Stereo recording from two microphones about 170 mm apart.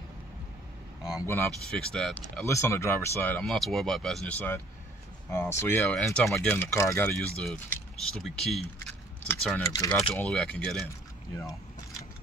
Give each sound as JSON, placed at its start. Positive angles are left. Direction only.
{"t": 1.1, "sound": "speech", "side_deg": 15}
{"t": 2.4, "sound": "speech", "side_deg": 15}
{"t": 6.5, "sound": "speech", "side_deg": 15}
{"t": 7.4, "sound": "speech", "side_deg": 0}
{"t": 9.6, "sound": "speech", "side_deg": 20}
{"t": 10.2, "sound": "speech", "side_deg": 5}